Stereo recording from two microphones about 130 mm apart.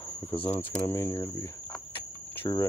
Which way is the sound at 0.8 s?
20° left (ahead or behind).